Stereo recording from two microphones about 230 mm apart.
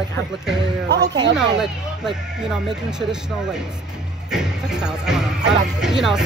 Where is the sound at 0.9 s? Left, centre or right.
Centre.